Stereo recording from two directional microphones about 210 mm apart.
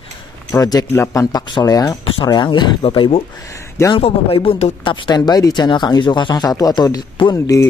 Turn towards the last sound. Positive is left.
turn(degrees=15)  # may be behind; listen again after turning